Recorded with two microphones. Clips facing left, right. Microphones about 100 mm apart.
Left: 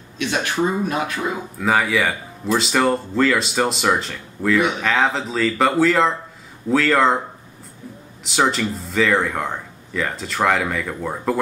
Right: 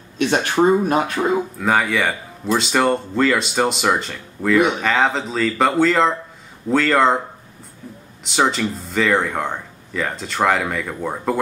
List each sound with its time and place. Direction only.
0.2 s speech: 45° right (ahead or behind)
1.6 s speech: centre (ahead or behind)
8.2 s speech: centre (ahead or behind)